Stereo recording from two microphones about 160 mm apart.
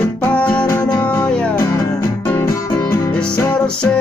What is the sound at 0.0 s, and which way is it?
Music, 10° left (ahead or behind).